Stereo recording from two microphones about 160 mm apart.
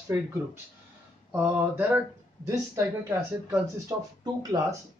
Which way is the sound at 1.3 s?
10° right (ahead or behind).